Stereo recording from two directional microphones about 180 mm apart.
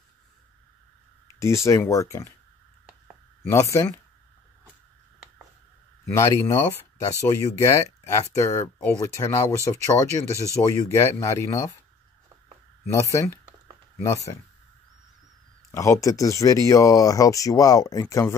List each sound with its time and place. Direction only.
1.4 s speech: 15° left (ahead or behind)
3.4 s speech: 15° left (ahead or behind)
6.1 s speech: 15° left (ahead or behind)
12.9 s speech: 20° left (ahead or behind)
15.7 s speech: 15° left (ahead or behind)